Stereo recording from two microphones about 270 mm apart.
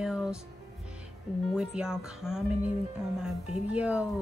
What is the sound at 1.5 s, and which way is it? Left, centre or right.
Speech, centre.